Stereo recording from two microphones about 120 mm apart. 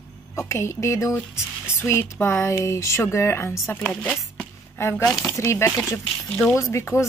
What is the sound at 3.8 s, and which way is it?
Speech, 10° left (ahead or behind).